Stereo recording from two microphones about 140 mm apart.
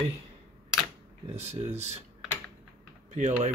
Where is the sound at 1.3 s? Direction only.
50° right (ahead or behind).